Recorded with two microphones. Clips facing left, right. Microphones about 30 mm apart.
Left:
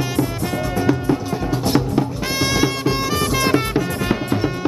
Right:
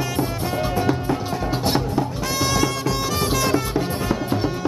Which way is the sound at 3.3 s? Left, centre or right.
Left.